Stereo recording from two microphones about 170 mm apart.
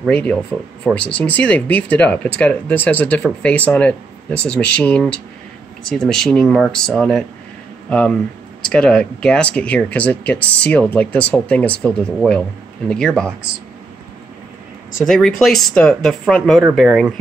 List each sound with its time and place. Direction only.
0.1 s speech: 10° left (ahead or behind)
15.0 s speech: centre (ahead or behind)